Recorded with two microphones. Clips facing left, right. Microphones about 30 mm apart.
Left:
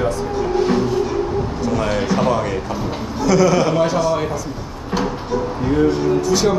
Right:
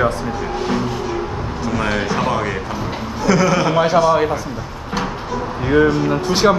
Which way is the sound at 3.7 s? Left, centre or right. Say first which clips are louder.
Right 3 dB; right.